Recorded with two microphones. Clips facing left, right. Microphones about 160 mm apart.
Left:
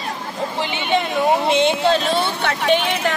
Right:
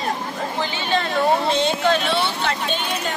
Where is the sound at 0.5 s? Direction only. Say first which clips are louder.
Left 3 dB; 15° left (ahead or behind).